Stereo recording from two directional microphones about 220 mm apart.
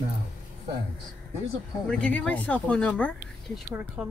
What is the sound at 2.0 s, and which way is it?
Speech, 5° left (ahead or behind).